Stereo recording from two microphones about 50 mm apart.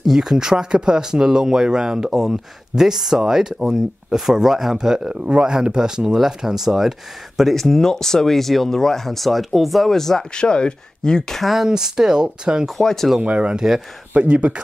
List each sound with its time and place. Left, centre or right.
0.0 s speech: centre
7.5 s speech: centre
10.3 s speech: centre
11.4 s speech: centre
12.7 s speech: centre
13.2 s speech: right